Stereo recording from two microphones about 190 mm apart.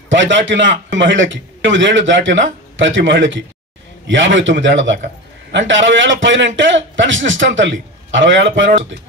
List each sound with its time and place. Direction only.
0.1 s a man's voice: 75° right (ahead or behind)